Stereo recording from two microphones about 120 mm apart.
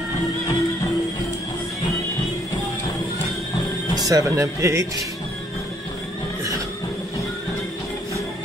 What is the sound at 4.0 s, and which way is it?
Speech, 30° right (ahead or behind).